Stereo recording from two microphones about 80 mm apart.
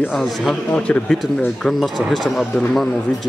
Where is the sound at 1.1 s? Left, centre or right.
Centre.